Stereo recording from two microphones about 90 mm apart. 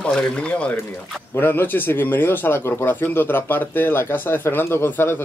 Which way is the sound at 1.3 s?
25° left (ahead or behind).